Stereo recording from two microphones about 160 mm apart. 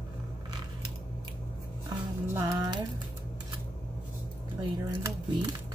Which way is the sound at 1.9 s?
20° right (ahead or behind).